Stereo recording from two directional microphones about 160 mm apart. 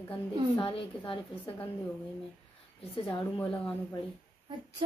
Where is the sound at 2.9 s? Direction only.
35° left (ahead or behind).